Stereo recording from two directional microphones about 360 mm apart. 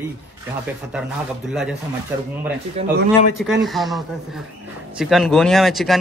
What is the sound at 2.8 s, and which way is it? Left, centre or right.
Speech, centre.